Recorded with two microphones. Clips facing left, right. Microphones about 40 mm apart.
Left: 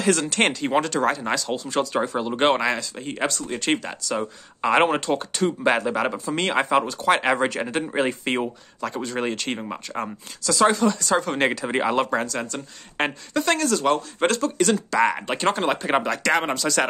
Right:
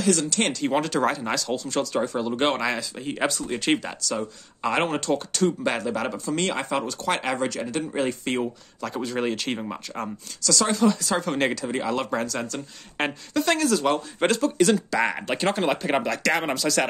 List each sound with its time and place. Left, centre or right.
0.0 s speech: left
0.5 s speech: centre
0.8 s speech: centre
2.7 s speech: centre
4.2 s speech: left
6.6 s speech: left
6.9 s speech: centre
7.3 s speech: left
8.8 s speech: centre
10.4 s speech: left
10.7 s speech: centre
11.6 s speech: left
12.0 s speech: centre